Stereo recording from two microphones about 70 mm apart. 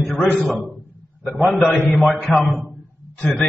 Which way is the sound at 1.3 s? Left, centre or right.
Centre.